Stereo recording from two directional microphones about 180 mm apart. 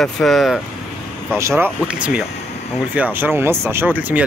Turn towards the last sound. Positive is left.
turn(degrees=-10)  # may be behind; listen again after turning